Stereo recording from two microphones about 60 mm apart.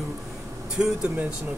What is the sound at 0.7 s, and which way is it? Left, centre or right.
Speech, centre.